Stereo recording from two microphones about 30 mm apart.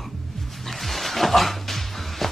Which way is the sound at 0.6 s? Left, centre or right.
Centre.